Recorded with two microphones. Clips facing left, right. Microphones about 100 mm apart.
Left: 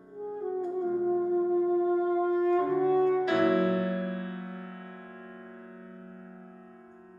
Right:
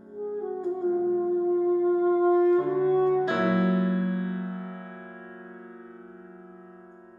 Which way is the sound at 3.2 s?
25° right (ahead or behind).